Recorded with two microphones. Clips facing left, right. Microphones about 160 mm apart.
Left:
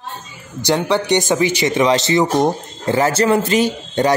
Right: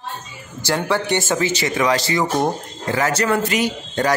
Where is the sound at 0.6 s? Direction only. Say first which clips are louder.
Left 4 dB; 20° left (ahead or behind).